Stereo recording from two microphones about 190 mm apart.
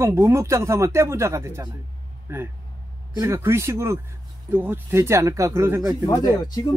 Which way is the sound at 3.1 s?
15° right (ahead or behind).